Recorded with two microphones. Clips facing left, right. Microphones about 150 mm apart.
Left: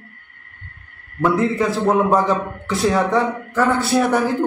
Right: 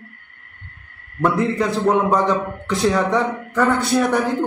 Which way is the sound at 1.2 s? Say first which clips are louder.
Left 1 dB; centre (ahead or behind).